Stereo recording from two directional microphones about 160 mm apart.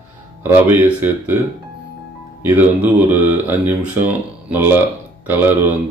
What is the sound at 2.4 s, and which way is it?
Speech, 10° right (ahead or behind).